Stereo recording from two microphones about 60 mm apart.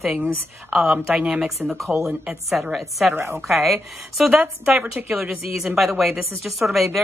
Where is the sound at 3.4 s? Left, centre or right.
Centre.